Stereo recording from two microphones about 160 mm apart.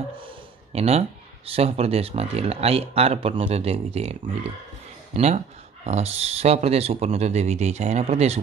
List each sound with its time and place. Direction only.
0.7 s speech: 40° right (ahead or behind)